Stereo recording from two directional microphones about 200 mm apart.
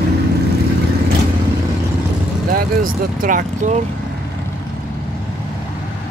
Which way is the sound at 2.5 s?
45° right (ahead or behind).